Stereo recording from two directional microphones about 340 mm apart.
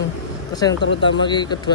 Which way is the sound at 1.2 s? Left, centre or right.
Centre.